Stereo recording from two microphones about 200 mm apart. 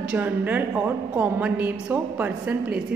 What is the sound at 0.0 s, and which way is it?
A woman's voice, 5° right (ahead or behind).